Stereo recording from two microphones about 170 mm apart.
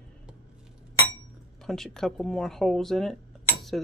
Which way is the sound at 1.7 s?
5° left (ahead or behind).